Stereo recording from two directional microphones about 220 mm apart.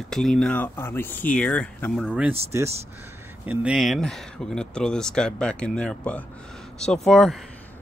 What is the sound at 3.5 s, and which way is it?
Speech, 5° right (ahead or behind).